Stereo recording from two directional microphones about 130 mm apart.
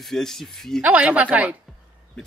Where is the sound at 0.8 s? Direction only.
10° right (ahead or behind).